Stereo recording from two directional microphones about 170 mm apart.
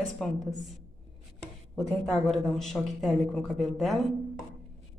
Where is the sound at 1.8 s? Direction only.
Centre (ahead or behind).